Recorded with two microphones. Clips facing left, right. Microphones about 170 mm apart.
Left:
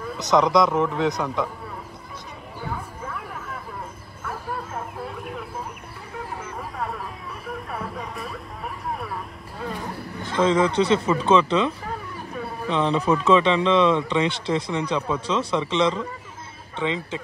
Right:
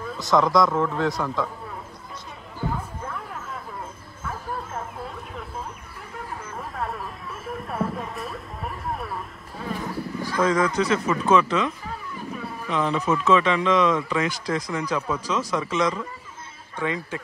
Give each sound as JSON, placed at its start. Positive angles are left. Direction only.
{"t": 0.2, "sound": "speech", "side_deg": 20}
{"t": 6.7, "sound": "a sound", "side_deg": 0}
{"t": 10.2, "sound": "speech", "side_deg": 25}